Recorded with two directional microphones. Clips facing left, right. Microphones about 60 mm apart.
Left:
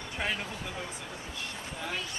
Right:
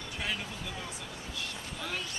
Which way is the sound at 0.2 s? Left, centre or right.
Left.